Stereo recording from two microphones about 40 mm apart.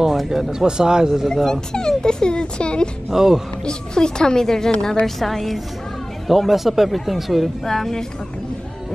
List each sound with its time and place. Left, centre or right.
0.0 s speech: centre
1.3 s speech: centre
3.1 s speech: centre
3.6 s speech: centre
7.6 s speech: centre